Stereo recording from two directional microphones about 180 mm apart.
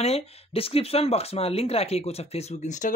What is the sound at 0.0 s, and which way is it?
Speech, 35° left (ahead or behind).